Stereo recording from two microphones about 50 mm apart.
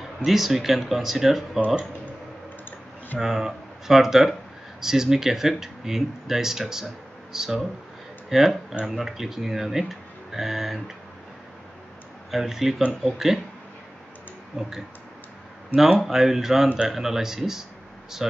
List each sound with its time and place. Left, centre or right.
0.2 s speech: centre
3.2 s speech: centre
12.3 s speech: centre
14.6 s speech: centre
16.0 s speech: centre
16.6 s speech: centre
16.9 s speech: centre